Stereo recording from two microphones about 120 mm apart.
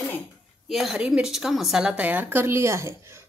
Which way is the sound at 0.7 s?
Centre (ahead or behind).